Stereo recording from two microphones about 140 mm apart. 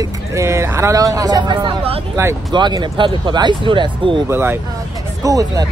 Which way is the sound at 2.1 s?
20° right (ahead or behind).